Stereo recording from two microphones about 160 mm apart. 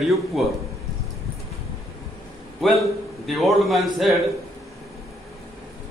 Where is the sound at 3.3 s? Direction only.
Centre (ahead or behind).